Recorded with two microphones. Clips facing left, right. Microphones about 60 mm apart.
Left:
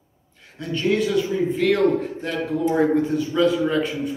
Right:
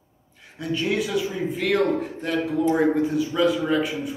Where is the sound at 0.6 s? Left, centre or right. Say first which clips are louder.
Left 3 dB; centre.